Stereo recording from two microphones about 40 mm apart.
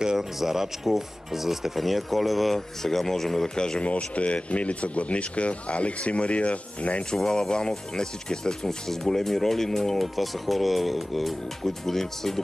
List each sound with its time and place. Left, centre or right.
0.0 s speech: centre
3.5 s speech: centre
3.8 s speech: left
7.2 s speech: centre